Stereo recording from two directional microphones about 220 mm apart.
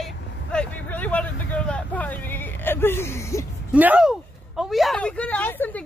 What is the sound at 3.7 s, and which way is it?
Speech, 5° right (ahead or behind).